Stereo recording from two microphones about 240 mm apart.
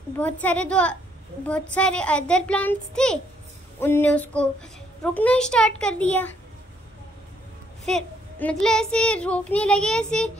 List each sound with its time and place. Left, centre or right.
0.2 s a child's voice: centre
7.8 s a child's voice: centre